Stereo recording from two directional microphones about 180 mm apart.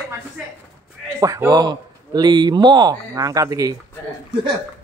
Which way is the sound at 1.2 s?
20° right (ahead or behind).